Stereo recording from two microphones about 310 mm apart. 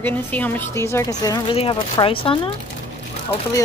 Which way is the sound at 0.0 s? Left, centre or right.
Centre.